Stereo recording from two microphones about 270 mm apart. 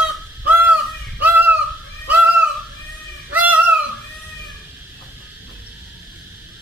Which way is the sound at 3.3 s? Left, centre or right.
Centre.